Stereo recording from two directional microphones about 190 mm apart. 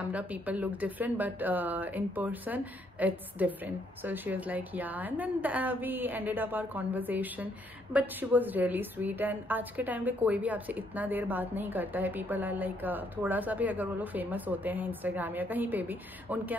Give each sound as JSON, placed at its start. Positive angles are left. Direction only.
{"t": 0.0, "sound": "a woman's voice", "side_deg": -10}